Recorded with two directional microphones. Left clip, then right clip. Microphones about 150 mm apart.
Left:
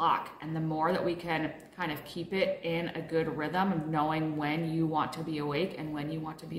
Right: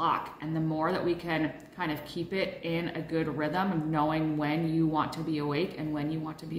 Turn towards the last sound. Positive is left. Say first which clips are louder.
# right 3 dB
turn(degrees=5)  # may be behind; listen again after turning